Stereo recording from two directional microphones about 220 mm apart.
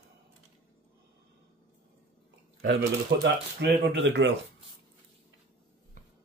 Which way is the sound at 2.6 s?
45° right (ahead or behind).